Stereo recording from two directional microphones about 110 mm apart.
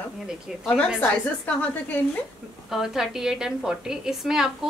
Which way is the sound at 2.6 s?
5° right (ahead or behind).